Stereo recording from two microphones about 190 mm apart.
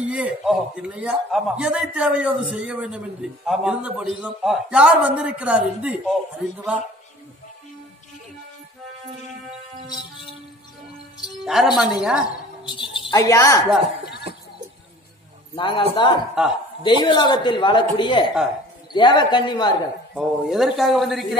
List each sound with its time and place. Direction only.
0.0 s a man's voice: 5° right (ahead or behind)
11.4 s a man's voice: centre (ahead or behind)
12.3 s a sound: 25° left (ahead or behind)
15.5 s speech: 25° left (ahead or behind)
16.4 s a man's voice: 5° right (ahead or behind)
16.8 s speech: 25° left (ahead or behind)
20.2 s a man's voice: centre (ahead or behind)